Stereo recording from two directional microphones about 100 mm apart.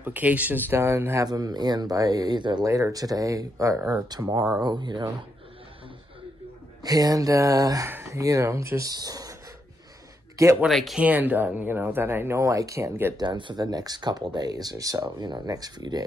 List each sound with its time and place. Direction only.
0.0 s speech: 15° right (ahead or behind)
1.2 s speech: 40° right (ahead or behind)
2.6 s speech: 35° right (ahead or behind)
6.8 s speech: 40° right (ahead or behind)
10.7 s speech: centre (ahead or behind)
11.0 s speech: 15° right (ahead or behind)
13.2 s speech: 50° right (ahead or behind)